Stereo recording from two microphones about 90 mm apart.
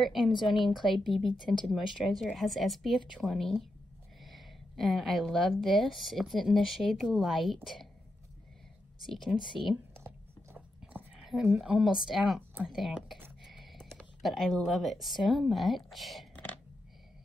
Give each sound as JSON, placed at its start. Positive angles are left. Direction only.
{"t": 0.0, "sound": "speech", "side_deg": 0}
{"t": 4.2, "sound": "a sound", "side_deg": 0}
{"t": 5.5, "sound": "speech", "side_deg": 0}
{"t": 9.0, "sound": "speech", "side_deg": 0}
{"t": 9.9, "sound": "whispering", "side_deg": -25}
{"t": 10.8, "sound": "a sound", "side_deg": -15}
{"t": 11.5, "sound": "speech", "side_deg": -5}